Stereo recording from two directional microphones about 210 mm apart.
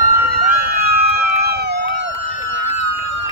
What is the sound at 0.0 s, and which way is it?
Emergency vehicle, 45° right (ahead or behind).